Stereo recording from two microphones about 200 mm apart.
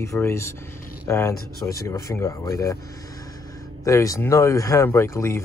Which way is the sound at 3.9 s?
15° left (ahead or behind).